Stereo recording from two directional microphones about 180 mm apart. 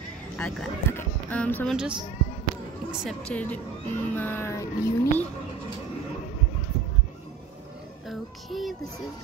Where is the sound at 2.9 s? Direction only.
5° left (ahead or behind).